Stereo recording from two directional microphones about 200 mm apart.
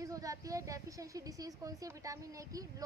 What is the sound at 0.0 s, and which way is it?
A woman's voice, 15° right (ahead or behind).